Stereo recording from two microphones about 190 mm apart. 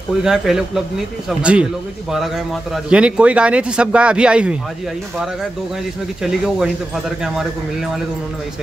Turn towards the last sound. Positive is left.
turn(degrees=0)  # may be behind; listen again after turning